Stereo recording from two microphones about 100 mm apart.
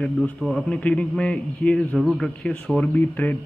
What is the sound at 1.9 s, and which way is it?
A man's voice, 5° left (ahead or behind).